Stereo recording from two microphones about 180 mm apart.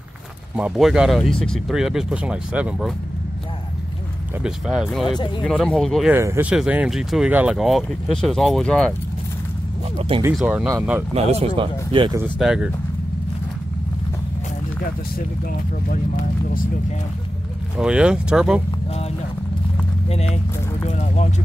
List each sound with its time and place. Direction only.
0.6 s speech: 5° right (ahead or behind)
4.4 s speech: 5° right (ahead or behind)
5.0 s speech: 25° left (ahead or behind)
5.4 s speech: 5° left (ahead or behind)
6.1 s speech: 15° right (ahead or behind); by 8.9 s 5° left (ahead or behind)
9.9 s speech: 30° right (ahead or behind)
10.3 s speech: 5° right (ahead or behind)
11.1 s speech: 35° right (ahead or behind)
12.4 s speech: 5° right (ahead or behind)
17.7 s speech: 5° right (ahead or behind)
20.8 s speech: 40° left (ahead or behind)